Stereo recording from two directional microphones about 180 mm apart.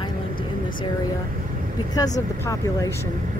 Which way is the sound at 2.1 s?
20° left (ahead or behind).